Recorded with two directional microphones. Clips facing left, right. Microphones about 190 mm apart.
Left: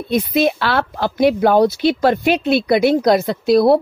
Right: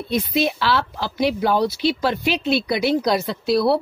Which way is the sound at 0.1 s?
50° left (ahead or behind).